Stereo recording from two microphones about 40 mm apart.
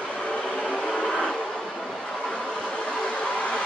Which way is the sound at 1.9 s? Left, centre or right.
Centre.